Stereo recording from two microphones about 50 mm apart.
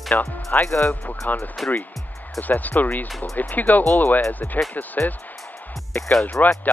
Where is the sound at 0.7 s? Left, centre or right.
Left.